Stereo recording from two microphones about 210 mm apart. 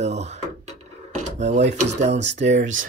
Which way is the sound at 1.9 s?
35° right (ahead or behind).